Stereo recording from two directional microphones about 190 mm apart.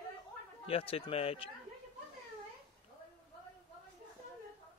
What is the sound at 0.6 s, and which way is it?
Speech, 30° left (ahead or behind).